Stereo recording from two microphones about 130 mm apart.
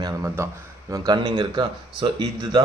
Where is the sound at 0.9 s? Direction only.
30° right (ahead or behind).